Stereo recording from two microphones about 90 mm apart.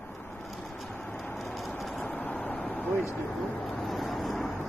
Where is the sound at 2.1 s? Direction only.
15° left (ahead or behind).